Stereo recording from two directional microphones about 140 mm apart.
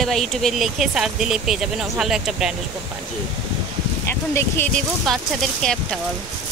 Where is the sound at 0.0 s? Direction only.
Centre (ahead or behind).